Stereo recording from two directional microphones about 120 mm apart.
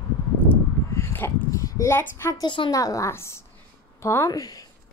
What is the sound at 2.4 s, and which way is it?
Speech, 45° left (ahead or behind).